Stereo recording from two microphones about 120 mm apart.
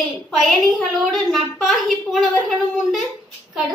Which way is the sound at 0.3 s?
5° left (ahead or behind).